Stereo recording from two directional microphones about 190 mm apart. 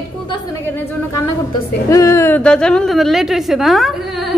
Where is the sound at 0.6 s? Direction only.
10° left (ahead or behind).